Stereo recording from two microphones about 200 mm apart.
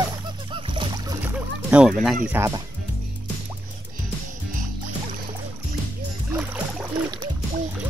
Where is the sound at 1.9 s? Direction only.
Centre (ahead or behind).